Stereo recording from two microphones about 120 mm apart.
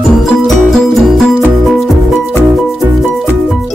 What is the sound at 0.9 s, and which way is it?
Music, centre (ahead or behind).